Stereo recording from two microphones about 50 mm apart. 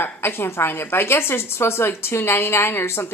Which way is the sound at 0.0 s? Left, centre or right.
Left.